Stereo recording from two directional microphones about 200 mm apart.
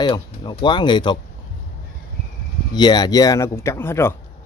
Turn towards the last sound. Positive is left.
turn(degrees=10)  # may be behind; listen again after turning